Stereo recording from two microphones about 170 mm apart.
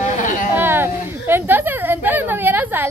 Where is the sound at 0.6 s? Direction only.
15° right (ahead or behind).